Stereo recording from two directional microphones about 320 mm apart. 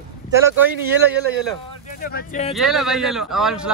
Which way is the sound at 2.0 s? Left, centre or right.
Left.